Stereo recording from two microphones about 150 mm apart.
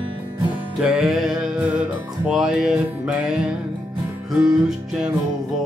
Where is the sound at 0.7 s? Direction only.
5° right (ahead or behind).